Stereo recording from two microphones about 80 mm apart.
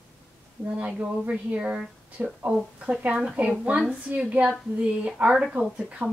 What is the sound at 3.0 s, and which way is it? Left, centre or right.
A woman's voice, centre.